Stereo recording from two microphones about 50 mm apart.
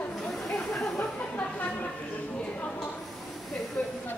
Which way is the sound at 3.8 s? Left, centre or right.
Centre.